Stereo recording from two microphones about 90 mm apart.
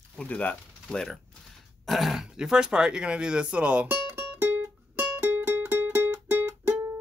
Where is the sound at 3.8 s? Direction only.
25° right (ahead or behind).